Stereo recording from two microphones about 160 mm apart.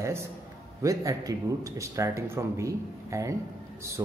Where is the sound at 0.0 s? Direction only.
15° right (ahead or behind).